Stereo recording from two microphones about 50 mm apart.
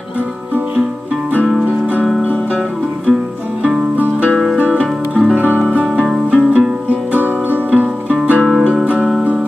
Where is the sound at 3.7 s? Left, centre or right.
Centre.